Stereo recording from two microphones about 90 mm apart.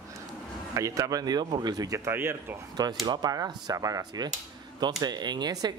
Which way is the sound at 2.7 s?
50° right (ahead or behind).